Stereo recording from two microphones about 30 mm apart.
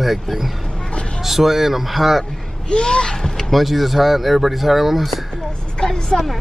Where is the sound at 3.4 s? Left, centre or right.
Centre.